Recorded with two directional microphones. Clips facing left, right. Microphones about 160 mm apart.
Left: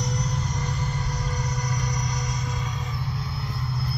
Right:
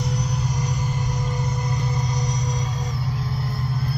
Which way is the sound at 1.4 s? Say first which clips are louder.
Right 3 dB; 25° right (ahead or behind).